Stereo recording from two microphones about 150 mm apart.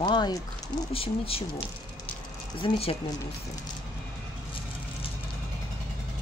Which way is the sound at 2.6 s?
40° left (ahead or behind).